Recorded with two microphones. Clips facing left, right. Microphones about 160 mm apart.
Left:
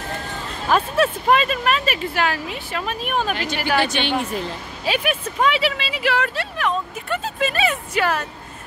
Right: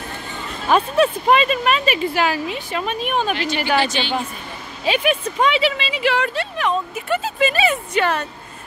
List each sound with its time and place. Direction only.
0.7 s speech: centre (ahead or behind)
3.8 s a woman's voice: 60° left (ahead or behind); by 4.5 s 75° left (ahead or behind)
4.8 s speech: 5° left (ahead or behind)